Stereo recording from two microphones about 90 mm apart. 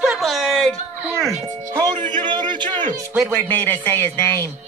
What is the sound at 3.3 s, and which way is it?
Speech, 20° left (ahead or behind).